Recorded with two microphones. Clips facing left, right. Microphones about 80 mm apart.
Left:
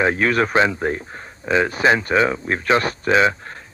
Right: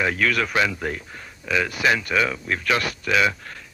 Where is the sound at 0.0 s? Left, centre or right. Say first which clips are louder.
Left 4 dB; left.